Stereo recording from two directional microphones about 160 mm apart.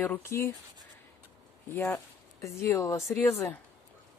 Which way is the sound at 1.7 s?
15° left (ahead or behind).